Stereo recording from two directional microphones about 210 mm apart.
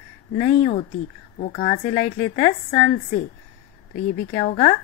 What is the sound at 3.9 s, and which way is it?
Speech, 35° left (ahead or behind).